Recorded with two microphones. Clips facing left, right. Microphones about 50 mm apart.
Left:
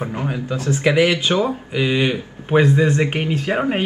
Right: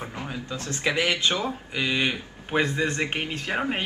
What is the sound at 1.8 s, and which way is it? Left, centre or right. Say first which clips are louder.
Speech: left 7 dB; centre.